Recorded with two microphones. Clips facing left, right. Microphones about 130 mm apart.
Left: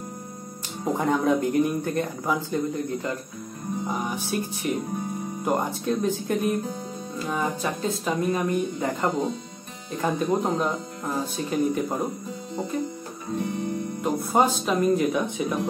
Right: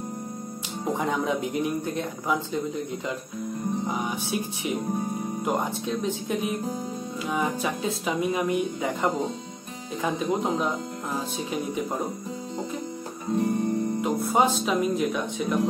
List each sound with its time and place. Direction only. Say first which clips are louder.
0.9 s speech: left 5 dB; centre (ahead or behind)
13.4 s music: right 4 dB; 40° right (ahead or behind)
14.0 s speech: left 2 dB; centre (ahead or behind)